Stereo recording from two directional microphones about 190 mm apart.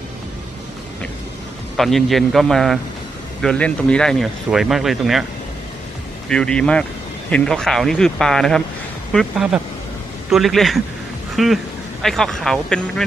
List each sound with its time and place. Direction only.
1.8 s speech: centre (ahead or behind)
6.2 s speech: 5° left (ahead or behind)